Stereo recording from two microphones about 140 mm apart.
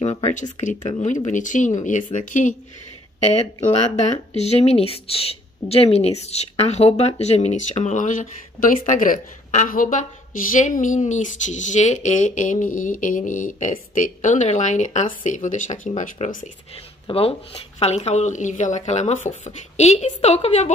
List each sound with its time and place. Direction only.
0.0 s a sound: 55° left (ahead or behind)
1.0 s speech: 60° left (ahead or behind)
3.2 s speech: 50° left (ahead or behind); by 16.4 s 70° left (ahead or behind)
17.1 s speech: 45° left (ahead or behind)